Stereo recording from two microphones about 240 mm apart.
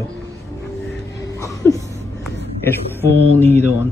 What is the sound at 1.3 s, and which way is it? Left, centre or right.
Music, centre.